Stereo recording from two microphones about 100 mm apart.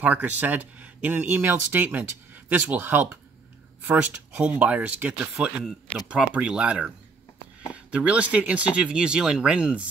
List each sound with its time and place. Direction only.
0.0 s speech: 15° right (ahead or behind)
5.3 s speech: centre (ahead or behind)